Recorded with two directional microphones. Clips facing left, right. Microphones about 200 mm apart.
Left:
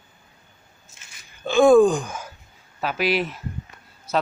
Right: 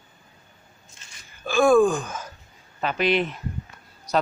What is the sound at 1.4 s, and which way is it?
Gasp, 20° left (ahead or behind).